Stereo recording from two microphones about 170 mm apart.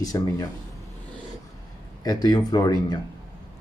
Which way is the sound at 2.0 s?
25° left (ahead or behind).